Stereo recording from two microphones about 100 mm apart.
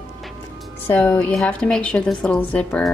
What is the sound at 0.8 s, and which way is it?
Speech, 20° left (ahead or behind).